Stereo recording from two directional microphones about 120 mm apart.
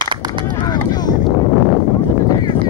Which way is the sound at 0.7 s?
35° left (ahead or behind).